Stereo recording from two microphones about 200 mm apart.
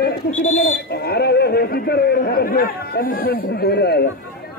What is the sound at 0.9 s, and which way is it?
A man's voice, 50° left (ahead or behind).